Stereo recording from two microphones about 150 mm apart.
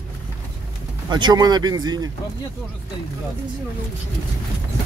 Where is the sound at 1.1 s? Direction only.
30° right (ahead or behind).